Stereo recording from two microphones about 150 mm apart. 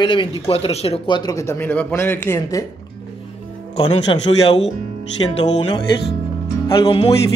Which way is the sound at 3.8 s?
40° left (ahead or behind).